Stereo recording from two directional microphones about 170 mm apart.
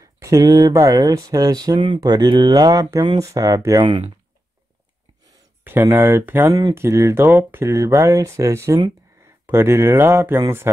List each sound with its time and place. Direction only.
0.0 s speech: 20° right (ahead or behind)
5.6 s speech: 10° right (ahead or behind)